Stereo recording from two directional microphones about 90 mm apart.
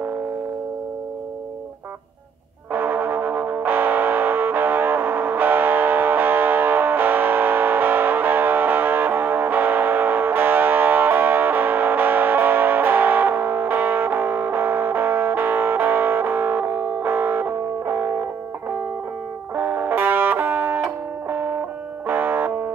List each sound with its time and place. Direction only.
2.7 s music: 20° right (ahead or behind)
19.5 s music: 25° right (ahead or behind)